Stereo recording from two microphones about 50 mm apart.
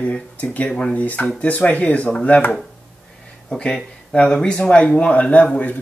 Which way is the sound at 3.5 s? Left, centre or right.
Centre.